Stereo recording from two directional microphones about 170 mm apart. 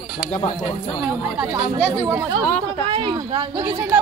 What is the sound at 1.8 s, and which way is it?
Speech, 10° right (ahead or behind).